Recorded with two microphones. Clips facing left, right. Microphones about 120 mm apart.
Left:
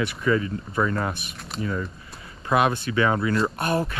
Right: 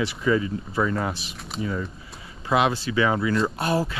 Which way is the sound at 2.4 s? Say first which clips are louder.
Even; 50° left (ahead or behind).